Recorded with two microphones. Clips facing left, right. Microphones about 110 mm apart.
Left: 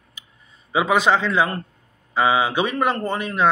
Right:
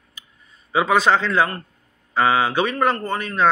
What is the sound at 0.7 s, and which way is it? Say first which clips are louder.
A man's voice: right 1 dB; 15° left (ahead or behind).